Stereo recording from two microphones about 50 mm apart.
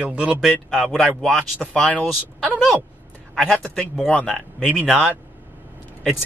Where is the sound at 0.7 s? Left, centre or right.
Centre.